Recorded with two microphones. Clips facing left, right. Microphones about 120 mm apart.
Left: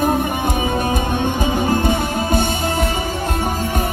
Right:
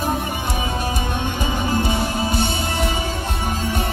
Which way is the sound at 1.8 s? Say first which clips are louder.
Left 3 dB; 50° left (ahead or behind).